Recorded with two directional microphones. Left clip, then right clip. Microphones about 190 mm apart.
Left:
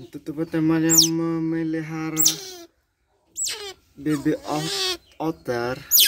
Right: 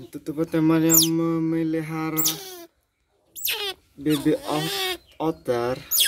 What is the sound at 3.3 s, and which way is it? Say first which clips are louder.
Rodents: right 3 dB; 10° right (ahead or behind).